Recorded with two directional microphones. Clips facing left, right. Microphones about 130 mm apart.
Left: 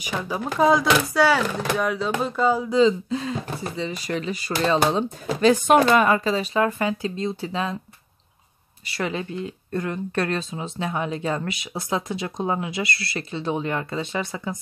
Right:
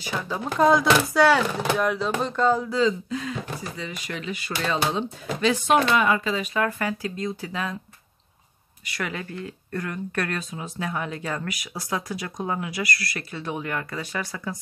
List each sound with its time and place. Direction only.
0.0 s speech: 15° left (ahead or behind)
0.5 s speech: centre (ahead or behind)
2.7 s speech: 25° left (ahead or behind)
8.8 s speech: 30° left (ahead or behind)